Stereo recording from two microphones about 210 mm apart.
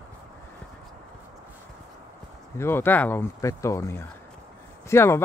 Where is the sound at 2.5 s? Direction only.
10° left (ahead or behind).